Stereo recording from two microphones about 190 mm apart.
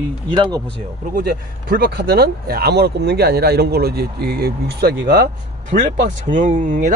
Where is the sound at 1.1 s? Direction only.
50° right (ahead or behind).